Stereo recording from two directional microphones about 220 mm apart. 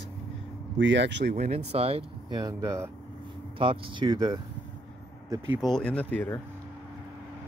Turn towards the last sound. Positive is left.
turn(degrees=10)  # may be behind; listen again after turning